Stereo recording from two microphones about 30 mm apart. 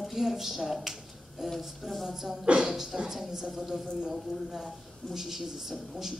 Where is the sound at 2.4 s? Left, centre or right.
Right.